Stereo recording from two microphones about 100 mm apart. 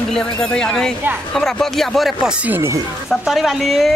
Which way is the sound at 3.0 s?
Centre (ahead or behind).